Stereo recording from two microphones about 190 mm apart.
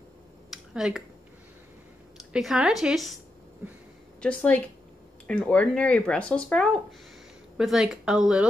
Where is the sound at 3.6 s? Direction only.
10° right (ahead or behind).